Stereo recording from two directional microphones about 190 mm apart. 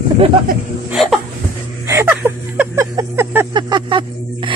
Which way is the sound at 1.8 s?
15° right (ahead or behind).